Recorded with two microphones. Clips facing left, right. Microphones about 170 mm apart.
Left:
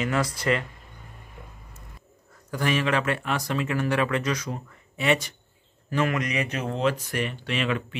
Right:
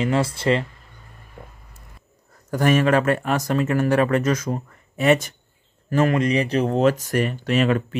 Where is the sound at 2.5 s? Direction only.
45° right (ahead or behind).